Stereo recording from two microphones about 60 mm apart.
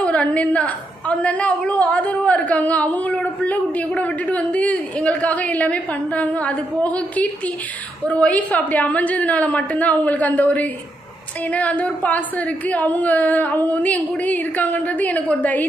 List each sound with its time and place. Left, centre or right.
0.0 s a woman's voice: left